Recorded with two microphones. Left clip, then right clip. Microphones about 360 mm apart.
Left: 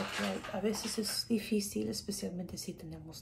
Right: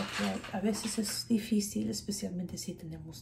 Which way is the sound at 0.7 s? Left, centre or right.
Centre.